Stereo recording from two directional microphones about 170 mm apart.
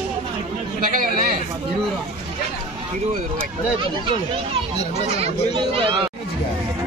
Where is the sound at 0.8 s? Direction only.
55° right (ahead or behind).